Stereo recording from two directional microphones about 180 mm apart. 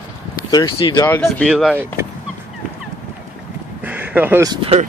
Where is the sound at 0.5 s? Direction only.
25° left (ahead or behind).